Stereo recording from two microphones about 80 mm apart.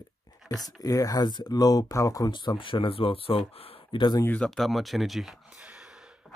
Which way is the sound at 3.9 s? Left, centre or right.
Left.